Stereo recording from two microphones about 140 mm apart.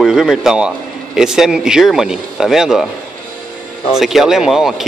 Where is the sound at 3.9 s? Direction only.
5° right (ahead or behind).